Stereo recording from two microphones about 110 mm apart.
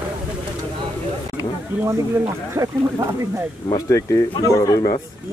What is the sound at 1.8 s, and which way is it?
Speech, 25° right (ahead or behind).